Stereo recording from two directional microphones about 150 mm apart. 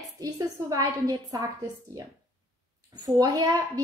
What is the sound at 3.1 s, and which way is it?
Speech, 25° right (ahead or behind).